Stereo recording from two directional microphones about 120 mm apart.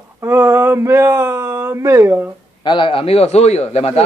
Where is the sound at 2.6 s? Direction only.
40° left (ahead or behind); by 4.0 s 65° left (ahead or behind).